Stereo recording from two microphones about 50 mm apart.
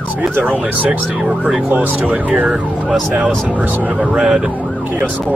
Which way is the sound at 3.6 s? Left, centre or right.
Right.